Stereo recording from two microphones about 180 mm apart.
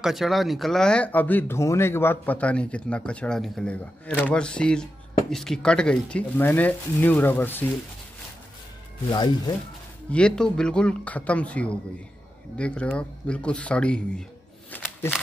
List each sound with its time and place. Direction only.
0.0 s speech: centre (ahead or behind)
9.1 s speech: 25° left (ahead or behind)
10.0 s speech: 5° left (ahead or behind)
14.7 s a sound: 10° left (ahead or behind)